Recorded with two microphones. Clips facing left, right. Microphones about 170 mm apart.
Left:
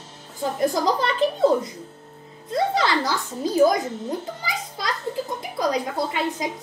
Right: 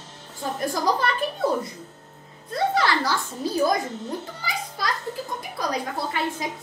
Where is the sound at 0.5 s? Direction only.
20° left (ahead or behind).